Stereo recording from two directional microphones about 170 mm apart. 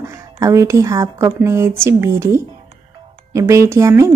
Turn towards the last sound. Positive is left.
turn(degrees=-15)  # may be behind; listen again after turning